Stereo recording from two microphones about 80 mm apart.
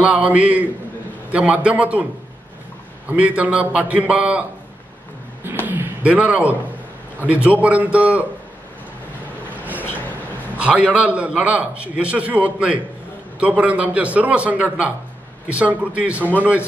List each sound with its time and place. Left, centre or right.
0.1 s a man's voice: centre
3.1 s a man's voice: centre
5.7 s a sound: right
7.4 s a man's voice: centre
10.6 s a man's voice: centre